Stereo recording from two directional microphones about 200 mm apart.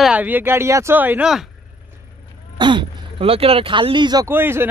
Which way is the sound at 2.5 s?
25° right (ahead or behind).